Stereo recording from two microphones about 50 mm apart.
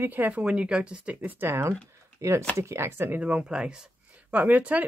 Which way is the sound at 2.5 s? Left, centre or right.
Right.